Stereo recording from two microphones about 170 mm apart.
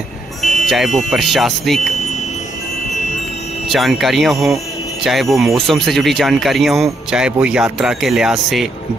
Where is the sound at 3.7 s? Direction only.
Centre (ahead or behind).